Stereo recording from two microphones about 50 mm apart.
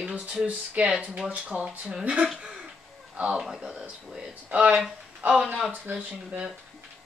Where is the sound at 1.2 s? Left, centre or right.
Right.